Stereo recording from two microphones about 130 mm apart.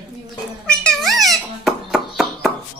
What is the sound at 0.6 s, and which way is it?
Cat, 5° left (ahead or behind).